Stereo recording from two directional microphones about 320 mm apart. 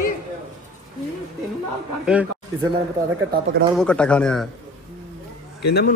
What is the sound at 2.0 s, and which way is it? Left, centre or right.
Speech, centre.